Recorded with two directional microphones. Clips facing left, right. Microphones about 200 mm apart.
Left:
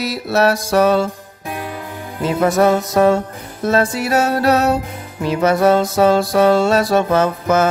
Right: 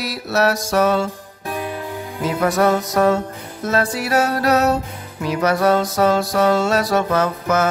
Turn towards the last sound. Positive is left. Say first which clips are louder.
# left 3 dB
turn(degrees=30)  # may be behind; listen again after turning